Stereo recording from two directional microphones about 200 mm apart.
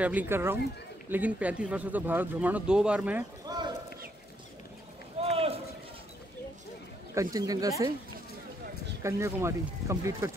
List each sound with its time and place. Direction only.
0.0 s speech: 10° right (ahead or behind)
3.4 s a sound: 20° right (ahead or behind)
5.2 s run: 30° right (ahead or behind)
7.3 s speech: 20° right (ahead or behind)
9.0 s speech: 15° right (ahead or behind)